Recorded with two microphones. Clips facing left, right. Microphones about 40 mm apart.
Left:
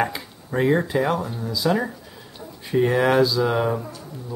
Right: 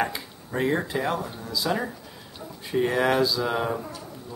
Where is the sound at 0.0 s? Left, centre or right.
Centre.